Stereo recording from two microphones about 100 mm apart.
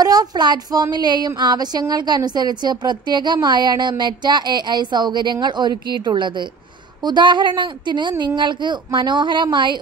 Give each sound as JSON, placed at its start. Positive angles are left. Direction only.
{"t": 0.0, "sound": "speech", "side_deg": -40}